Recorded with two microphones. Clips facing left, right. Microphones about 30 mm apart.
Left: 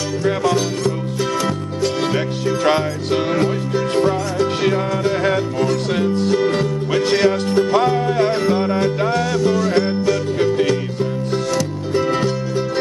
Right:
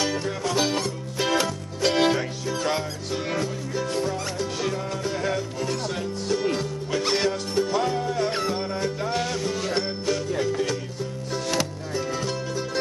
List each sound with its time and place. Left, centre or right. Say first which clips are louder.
0.2 s music: left 10 dB; left
1.3 s music: left 4 dB; centre
2.1 s music: left 8 dB; left
9.3 s music: left 10 dB; left
11.9 s music: left 13 dB; left